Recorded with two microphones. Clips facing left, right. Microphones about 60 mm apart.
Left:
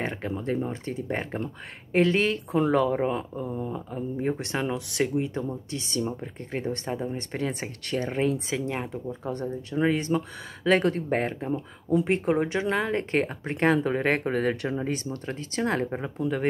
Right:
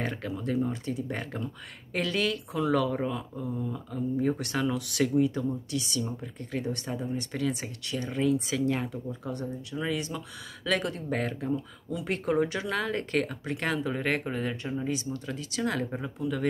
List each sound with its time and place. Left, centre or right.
0.0 s speech: left
13.7 s speech: left
15.2 s speech: left